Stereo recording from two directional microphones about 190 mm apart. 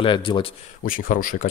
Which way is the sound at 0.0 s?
25° left (ahead or behind).